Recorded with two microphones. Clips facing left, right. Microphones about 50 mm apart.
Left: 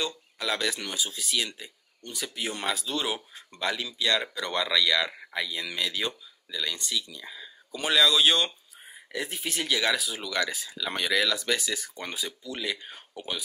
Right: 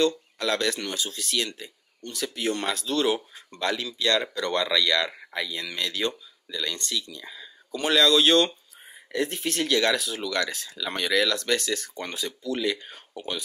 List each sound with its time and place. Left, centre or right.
0.0 s speech: centre